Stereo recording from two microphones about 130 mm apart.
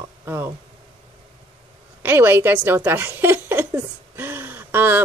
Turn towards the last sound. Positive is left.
turn(degrees=-15)  # may be behind; listen again after turning